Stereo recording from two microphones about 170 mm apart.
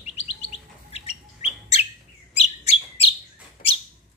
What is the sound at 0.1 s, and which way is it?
Chirp, 35° left (ahead or behind).